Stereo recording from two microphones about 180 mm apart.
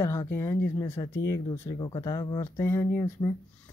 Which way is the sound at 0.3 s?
15° left (ahead or behind).